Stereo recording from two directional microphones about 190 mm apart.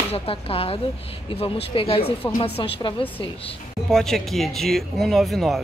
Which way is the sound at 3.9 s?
Centre (ahead or behind).